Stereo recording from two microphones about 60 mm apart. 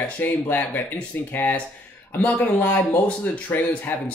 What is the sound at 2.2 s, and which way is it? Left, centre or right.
Speech, left.